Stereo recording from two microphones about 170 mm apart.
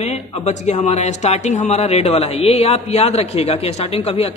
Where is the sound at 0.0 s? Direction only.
40° left (ahead or behind).